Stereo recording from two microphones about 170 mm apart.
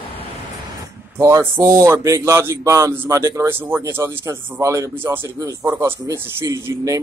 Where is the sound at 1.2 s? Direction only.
15° right (ahead or behind).